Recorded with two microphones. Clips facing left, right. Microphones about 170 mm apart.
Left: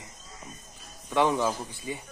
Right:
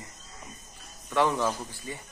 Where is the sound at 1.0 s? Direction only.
15° left (ahead or behind).